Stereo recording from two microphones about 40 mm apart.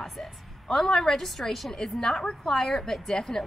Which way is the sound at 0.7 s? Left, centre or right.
Centre.